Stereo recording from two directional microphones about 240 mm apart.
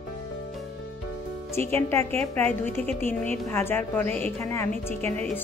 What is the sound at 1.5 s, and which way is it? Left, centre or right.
A woman's voice, centre.